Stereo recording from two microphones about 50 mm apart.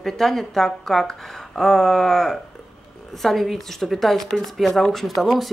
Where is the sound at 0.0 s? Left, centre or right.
Centre.